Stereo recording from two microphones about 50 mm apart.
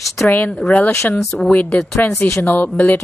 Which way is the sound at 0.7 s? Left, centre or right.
Left.